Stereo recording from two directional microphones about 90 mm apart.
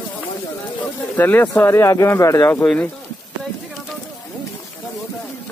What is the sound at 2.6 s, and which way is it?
Speech, 10° left (ahead or behind).